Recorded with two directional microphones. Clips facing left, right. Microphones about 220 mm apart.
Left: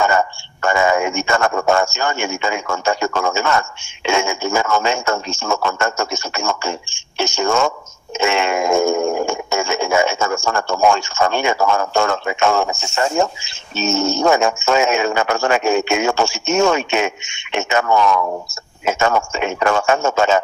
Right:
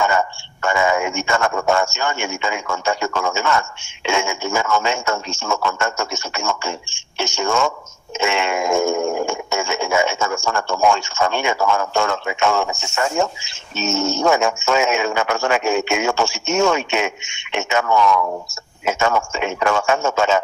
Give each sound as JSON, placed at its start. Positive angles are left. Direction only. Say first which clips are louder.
{"t": 0.0, "sound": "speech", "louder": "left 2 dB", "side_deg": 40}